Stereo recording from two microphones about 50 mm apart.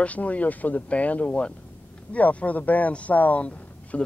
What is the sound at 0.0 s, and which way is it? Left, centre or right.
Speech, left.